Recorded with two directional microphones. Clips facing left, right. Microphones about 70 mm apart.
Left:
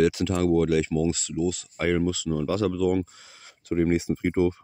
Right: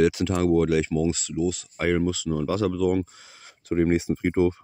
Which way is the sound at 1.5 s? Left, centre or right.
Centre.